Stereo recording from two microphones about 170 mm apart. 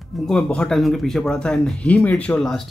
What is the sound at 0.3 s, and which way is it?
Speech, 5° left (ahead or behind).